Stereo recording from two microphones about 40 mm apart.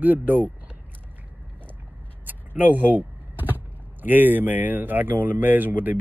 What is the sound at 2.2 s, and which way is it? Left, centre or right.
Speech, right.